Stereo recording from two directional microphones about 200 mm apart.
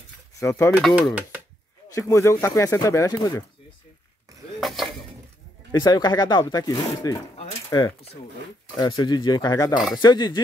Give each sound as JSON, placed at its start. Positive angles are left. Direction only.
{"t": 0.4, "sound": "speech", "side_deg": 15}
{"t": 0.7, "sound": "speech", "side_deg": 0}
{"t": 2.0, "sound": "speech", "side_deg": 15}
{"t": 4.6, "sound": "a sound", "side_deg": 0}
{"t": 5.7, "sound": "speech", "side_deg": 20}